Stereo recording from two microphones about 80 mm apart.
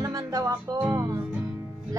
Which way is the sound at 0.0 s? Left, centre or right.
Right.